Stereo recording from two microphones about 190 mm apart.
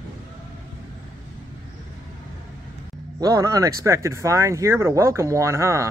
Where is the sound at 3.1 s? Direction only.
20° right (ahead or behind).